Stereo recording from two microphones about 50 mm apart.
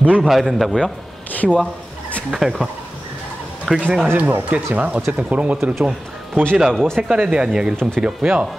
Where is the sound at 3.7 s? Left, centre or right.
Centre.